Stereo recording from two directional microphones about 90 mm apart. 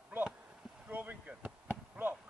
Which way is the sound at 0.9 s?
20° right (ahead or behind).